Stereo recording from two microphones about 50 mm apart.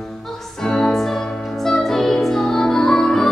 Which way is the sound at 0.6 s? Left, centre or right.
Centre.